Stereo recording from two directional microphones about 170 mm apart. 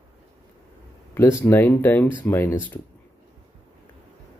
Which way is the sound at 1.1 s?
15° left (ahead or behind).